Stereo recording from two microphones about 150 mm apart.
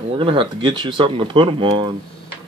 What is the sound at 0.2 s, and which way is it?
Speech, 35° right (ahead or behind).